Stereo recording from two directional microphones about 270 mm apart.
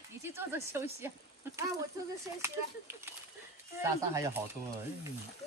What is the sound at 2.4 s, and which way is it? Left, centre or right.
Speech, centre.